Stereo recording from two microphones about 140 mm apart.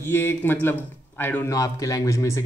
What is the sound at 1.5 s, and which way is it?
Speech, 25° left (ahead or behind).